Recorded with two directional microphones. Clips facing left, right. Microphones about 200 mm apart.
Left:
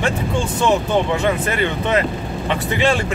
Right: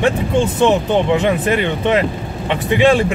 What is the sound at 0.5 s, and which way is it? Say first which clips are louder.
Speech: right 1 dB; 20° right (ahead or behind).